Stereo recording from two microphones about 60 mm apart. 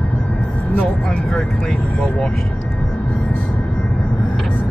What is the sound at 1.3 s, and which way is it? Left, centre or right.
Vehicle, centre.